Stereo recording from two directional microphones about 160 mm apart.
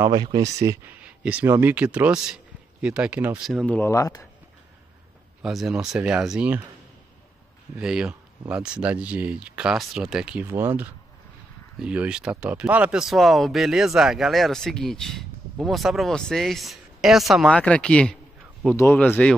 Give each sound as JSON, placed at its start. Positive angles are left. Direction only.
{"t": 0.0, "sound": "speech", "side_deg": -25}
{"t": 1.0, "sound": "a man's voice", "side_deg": -10}
{"t": 5.4, "sound": "speech", "side_deg": 0}
{"t": 7.8, "sound": "speech", "side_deg": -5}